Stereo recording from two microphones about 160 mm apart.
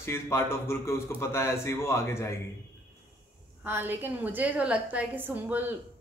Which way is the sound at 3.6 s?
15° right (ahead or behind).